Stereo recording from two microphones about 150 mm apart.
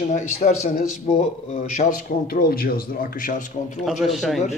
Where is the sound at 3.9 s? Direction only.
Centre (ahead or behind).